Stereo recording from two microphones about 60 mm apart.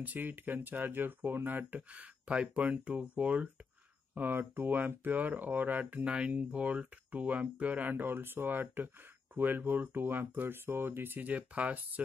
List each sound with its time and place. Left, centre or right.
0.0 s speech: right
1.8 s speech: centre
6.0 s speech: centre
7.9 s speech: right